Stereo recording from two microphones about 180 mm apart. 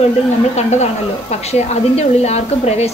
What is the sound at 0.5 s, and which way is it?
A woman's voice, 40° left (ahead or behind).